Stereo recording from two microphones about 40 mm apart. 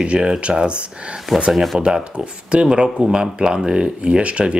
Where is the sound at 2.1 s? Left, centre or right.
Right.